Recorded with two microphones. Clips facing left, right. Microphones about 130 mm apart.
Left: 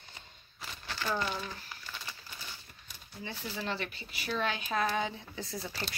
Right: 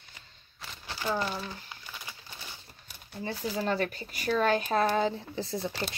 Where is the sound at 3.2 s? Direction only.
40° right (ahead or behind).